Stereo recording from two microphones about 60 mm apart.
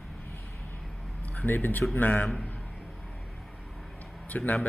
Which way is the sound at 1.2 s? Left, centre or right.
Left.